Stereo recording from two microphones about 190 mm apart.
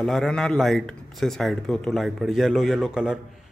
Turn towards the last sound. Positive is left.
turn(degrees=-5)  # may be behind; listen again after turning